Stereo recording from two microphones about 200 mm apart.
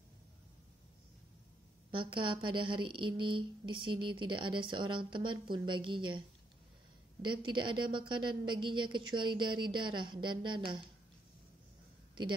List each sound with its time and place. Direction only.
1.9 s a woman's voice: 25° right (ahead or behind)